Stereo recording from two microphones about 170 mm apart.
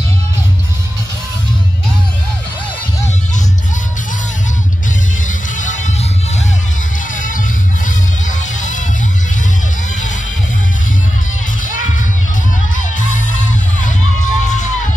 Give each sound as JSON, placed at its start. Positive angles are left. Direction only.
{"t": 7.2, "sound": "music", "side_deg": 50}
{"t": 11.6, "sound": "music", "side_deg": 50}